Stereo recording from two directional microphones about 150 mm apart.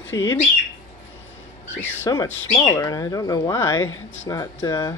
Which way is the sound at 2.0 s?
20° left (ahead or behind).